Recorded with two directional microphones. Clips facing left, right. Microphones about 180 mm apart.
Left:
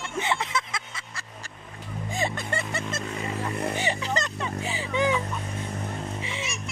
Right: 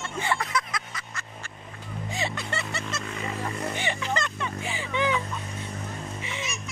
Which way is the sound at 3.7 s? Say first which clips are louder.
Left 2 dB; 40° left (ahead or behind).